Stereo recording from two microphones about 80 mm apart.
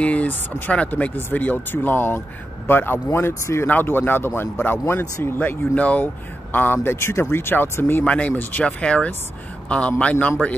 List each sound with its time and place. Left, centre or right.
0.0 s speech: centre
8.0 s speech: centre